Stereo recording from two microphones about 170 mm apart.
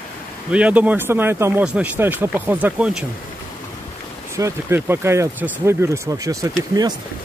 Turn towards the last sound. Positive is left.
turn(degrees=-20)  # may be behind; listen again after turning